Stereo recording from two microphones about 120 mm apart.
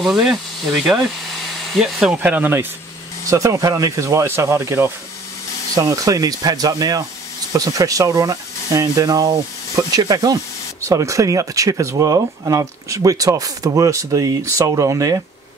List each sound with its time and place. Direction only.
0.0 s speech: 5° right (ahead or behind)
3.3 s speech: 30° right (ahead or behind)
5.8 s speech: 30° right (ahead or behind)